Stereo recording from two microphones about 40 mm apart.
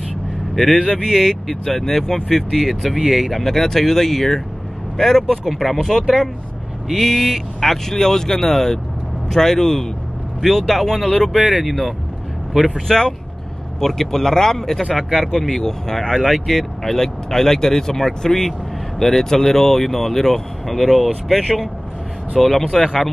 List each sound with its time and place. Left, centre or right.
1.1 s speech: centre
12.5 s speech: centre
12.8 s speech: centre
16.3 s speech: centre